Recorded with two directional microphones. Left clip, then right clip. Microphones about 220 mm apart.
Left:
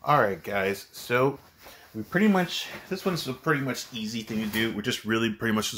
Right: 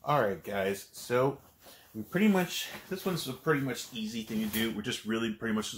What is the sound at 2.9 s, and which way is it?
Speech, 40° left (ahead or behind).